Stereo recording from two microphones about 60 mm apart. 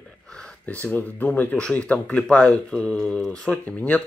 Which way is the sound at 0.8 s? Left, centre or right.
Left.